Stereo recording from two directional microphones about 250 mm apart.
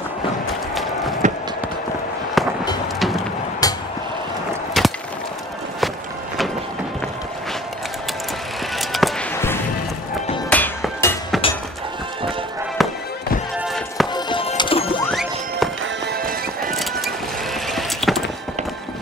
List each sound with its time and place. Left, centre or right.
1.2 s a sound: right
2.4 s music: centre
3.6 s a sound: centre
4.8 s a sound: centre
8.7 s music: centre
12.8 s music: centre
14.1 s music: left
15.0 s music: centre
15.8 s music: right
17.6 s vehicle: centre